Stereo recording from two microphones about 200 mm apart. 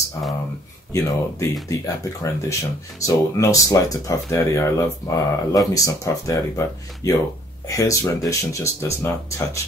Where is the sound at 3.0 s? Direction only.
15° left (ahead or behind).